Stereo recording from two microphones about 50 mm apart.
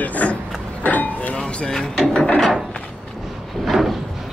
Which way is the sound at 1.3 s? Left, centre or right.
Centre.